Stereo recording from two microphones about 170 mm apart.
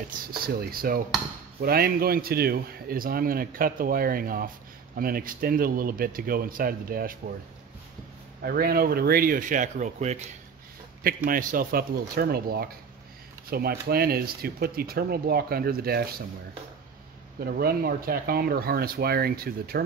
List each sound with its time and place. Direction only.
0.4 s a man's voice: 60° right (ahead or behind)
8.4 s a man's voice: 65° right (ahead or behind); by 10.3 s 40° right (ahead or behind)
11.2 s a man's voice: 55° right (ahead or behind)
17.5 s a man's voice: 65° right (ahead or behind)